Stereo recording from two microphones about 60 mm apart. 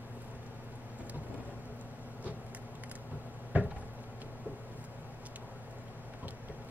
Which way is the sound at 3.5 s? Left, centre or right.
Right.